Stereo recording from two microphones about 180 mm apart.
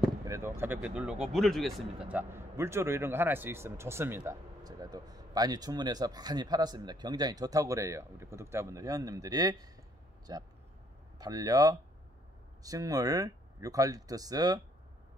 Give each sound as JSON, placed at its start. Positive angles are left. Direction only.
{"t": 0.2, "sound": "speech", "side_deg": -15}